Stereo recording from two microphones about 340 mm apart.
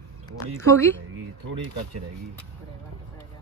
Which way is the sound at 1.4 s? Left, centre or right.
Right.